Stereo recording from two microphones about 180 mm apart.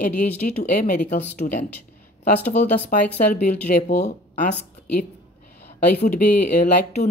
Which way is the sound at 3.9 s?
40° left (ahead or behind).